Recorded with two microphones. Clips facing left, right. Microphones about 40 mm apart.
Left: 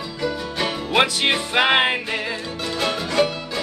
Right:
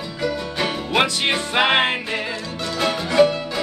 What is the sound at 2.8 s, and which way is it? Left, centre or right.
Music, centre.